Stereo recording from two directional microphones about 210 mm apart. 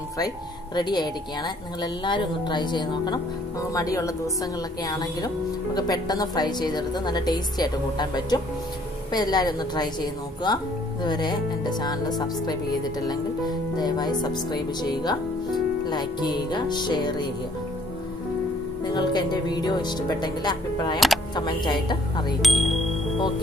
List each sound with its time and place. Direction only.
0.7 s a woman's voice: 20° left (ahead or behind)
13.5 s speech: 20° left (ahead or behind)
18.9 s speech: 20° left (ahead or behind)
22.4 s speech: centre (ahead or behind)